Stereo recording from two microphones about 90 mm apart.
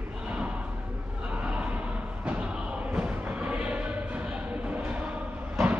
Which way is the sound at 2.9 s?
15° right (ahead or behind).